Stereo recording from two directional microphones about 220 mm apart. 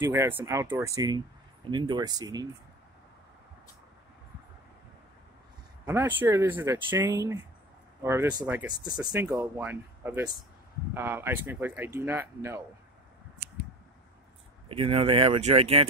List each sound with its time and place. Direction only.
0.0 s speech: 10° right (ahead or behind)
5.9 s speech: 10° right (ahead or behind)
14.7 s speech: 25° right (ahead or behind)